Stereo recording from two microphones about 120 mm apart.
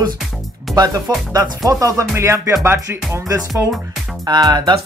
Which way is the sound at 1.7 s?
30° right (ahead or behind).